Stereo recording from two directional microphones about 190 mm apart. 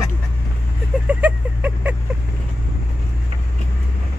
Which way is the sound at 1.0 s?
10° right (ahead or behind).